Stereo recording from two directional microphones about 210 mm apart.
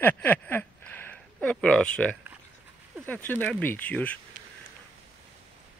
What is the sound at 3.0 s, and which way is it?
Speech, 10° left (ahead or behind).